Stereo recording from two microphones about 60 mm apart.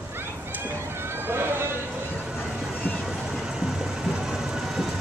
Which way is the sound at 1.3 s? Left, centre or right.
Right.